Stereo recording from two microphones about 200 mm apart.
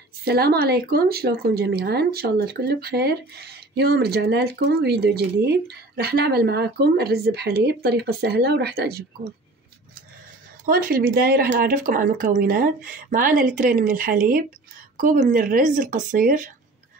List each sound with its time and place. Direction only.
0.2 s speech: 50° right (ahead or behind)
10.6 s speech: 45° right (ahead or behind)